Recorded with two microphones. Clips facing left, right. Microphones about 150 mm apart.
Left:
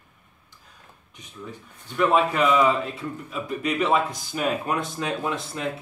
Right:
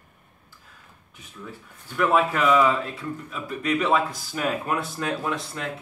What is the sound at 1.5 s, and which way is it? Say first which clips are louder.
A man's voice: left 1 dB; 5° right (ahead or behind).